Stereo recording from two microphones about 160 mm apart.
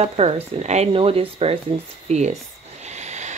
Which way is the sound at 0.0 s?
40° right (ahead or behind).